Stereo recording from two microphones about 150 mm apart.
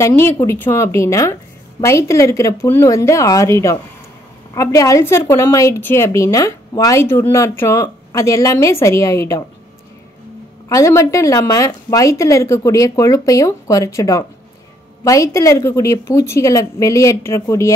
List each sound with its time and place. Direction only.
0.0 s a woman's voice: 15° left (ahead or behind)
10.7 s a woman's voice: 20° left (ahead or behind)